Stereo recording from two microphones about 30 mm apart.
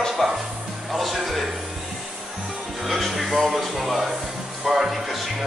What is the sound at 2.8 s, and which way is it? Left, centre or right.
Speech, centre.